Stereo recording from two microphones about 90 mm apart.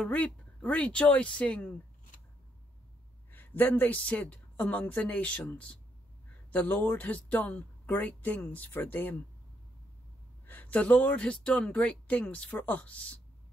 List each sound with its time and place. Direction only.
0.0 s speech: 15° left (ahead or behind)
3.3 s speech: 20° left (ahead or behind)
10.4 s speech: 20° left (ahead or behind)